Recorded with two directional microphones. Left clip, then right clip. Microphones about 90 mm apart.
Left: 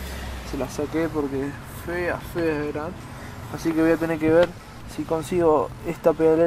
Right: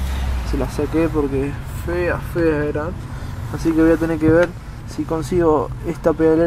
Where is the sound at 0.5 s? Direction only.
10° left (ahead or behind).